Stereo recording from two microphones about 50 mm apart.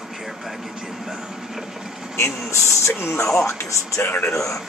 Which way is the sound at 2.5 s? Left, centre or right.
Left.